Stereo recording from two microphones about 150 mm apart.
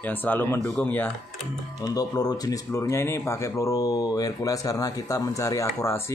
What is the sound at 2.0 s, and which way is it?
Speech, 25° left (ahead or behind).